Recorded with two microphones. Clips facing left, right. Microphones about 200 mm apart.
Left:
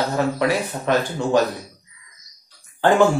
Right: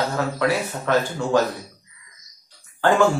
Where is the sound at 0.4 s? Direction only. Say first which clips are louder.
Left 1 dB; 15° left (ahead or behind).